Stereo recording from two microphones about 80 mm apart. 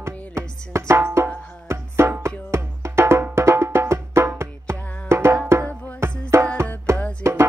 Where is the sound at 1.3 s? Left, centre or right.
Centre.